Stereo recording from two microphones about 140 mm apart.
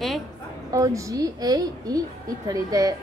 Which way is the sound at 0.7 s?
25° right (ahead or behind).